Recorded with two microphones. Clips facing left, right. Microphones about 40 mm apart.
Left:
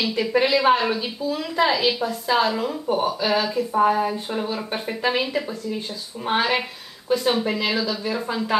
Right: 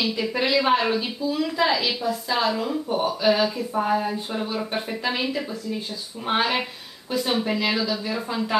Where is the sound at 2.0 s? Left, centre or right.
Left.